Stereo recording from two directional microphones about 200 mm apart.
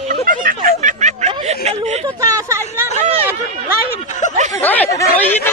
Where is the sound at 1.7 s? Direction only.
35° right (ahead or behind).